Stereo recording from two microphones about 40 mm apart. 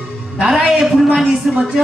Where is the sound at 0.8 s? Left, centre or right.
Centre.